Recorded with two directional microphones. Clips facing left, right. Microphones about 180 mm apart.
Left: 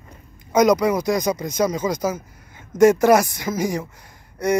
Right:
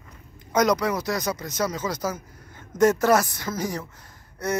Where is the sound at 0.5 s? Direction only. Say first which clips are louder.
Left 5 dB; 10° left (ahead or behind).